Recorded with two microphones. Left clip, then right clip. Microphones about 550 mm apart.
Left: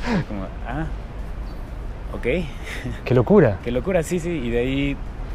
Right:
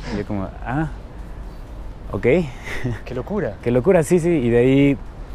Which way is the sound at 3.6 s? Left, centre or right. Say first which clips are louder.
Right 6 dB; right.